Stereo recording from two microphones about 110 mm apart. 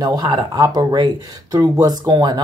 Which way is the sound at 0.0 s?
40° right (ahead or behind).